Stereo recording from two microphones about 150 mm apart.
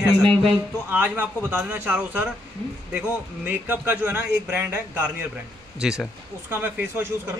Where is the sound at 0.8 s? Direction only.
10° right (ahead or behind).